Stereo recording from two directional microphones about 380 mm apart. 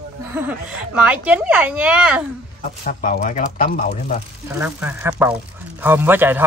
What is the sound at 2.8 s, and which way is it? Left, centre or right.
Speech, left.